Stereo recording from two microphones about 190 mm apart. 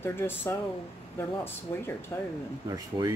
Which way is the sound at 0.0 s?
10° left (ahead or behind).